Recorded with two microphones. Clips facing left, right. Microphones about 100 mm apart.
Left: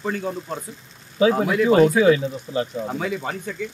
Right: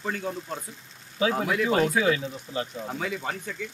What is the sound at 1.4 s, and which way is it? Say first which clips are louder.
Speech: left 8 dB; 30° left (ahead or behind).